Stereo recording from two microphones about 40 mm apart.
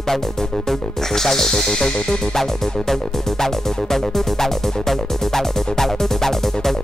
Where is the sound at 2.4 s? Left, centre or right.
Centre.